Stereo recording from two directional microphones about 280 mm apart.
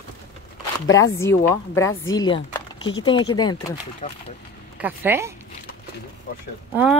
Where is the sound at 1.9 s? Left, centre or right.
Left.